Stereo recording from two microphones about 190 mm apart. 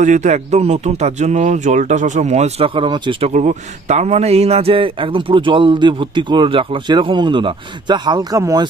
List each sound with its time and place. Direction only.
0.0 s speech: 40° right (ahead or behind); by 8.6 s 20° right (ahead or behind)